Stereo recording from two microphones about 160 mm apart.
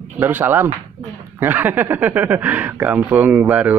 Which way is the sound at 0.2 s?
10° right (ahead or behind).